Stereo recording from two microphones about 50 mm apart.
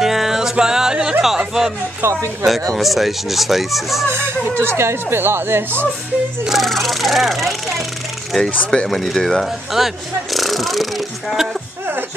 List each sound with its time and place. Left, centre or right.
0.0 s yodeling: centre
1.2 s a sound: centre
2.0 s speech: right
2.8 s speech: centre
4.1 s speech: right
6.6 s speech: centre
9.4 s speech: centre